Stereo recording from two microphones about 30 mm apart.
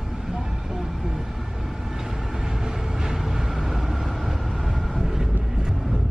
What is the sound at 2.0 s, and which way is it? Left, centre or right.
Train, centre.